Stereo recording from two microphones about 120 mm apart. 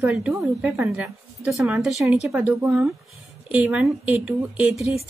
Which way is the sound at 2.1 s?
Centre (ahead or behind).